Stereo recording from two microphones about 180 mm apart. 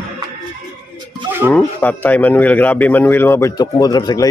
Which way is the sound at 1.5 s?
10° left (ahead or behind).